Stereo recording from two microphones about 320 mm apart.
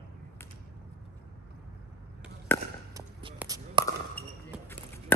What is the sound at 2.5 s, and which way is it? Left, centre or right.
Chop, centre.